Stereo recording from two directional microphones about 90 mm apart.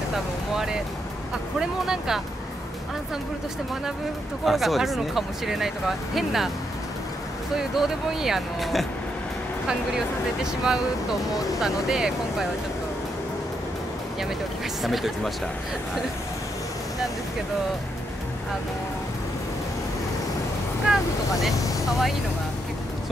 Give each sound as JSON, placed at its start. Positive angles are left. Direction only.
{"t": 0.1, "sound": "speech", "side_deg": -5}
{"t": 4.5, "sound": "speech", "side_deg": 0}
{"t": 7.5, "sound": "speech", "side_deg": -5}
{"t": 14.8, "sound": "speech", "side_deg": 0}
{"t": 20.9, "sound": "boat", "side_deg": -5}
{"t": 21.5, "sound": "a sound", "side_deg": 40}